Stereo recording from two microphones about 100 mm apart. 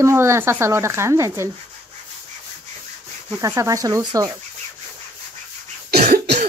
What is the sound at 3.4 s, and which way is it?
Speech, 30° right (ahead or behind).